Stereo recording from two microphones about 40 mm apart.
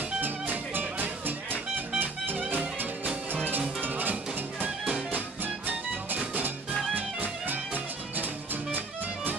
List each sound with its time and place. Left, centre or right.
0.2 s music: right
4.6 s music: right
5.1 s music: right